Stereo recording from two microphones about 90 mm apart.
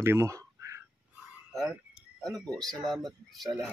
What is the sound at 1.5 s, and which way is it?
Speech, centre (ahead or behind).